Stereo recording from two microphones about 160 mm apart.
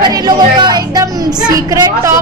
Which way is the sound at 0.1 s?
25° right (ahead or behind).